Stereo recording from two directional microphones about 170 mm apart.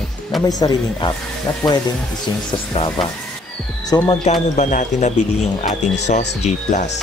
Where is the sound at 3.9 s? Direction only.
20° left (ahead or behind).